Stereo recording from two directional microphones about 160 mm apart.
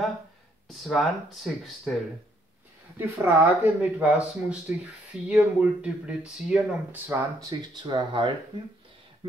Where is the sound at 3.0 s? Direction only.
15° right (ahead or behind).